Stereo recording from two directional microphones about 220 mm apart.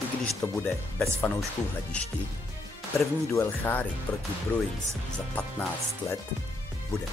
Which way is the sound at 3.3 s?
10° left (ahead or behind).